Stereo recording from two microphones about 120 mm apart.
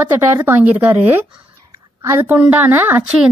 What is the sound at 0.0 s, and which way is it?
A woman's voice, 15° right (ahead or behind).